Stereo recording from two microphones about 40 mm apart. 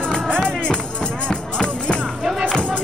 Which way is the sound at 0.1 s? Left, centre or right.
Centre.